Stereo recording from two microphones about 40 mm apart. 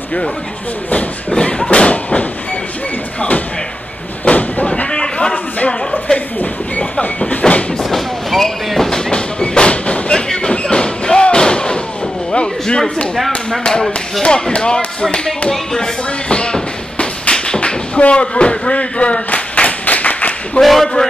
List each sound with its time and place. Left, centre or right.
1.7 s speech: left
4.2 s a sound: left
4.9 s a sound: left
5.7 s speech: centre
6.8 s vehicle: left
7.8 s train: centre
9.1 s music: left
10.1 s a sound: centre
12.3 s speech: left
14.2 s speech: left
15.5 s speech: centre
16.3 s a sound: left
20.6 s a man's voice: centre